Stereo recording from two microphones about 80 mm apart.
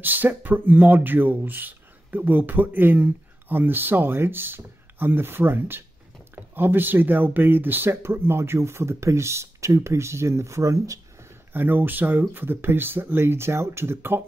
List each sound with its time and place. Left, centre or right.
0.0 s speech: right
11.5 s speech: right